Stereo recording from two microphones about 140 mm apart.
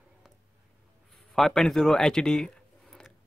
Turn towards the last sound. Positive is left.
turn(degrees=5)  # may be behind; listen again after turning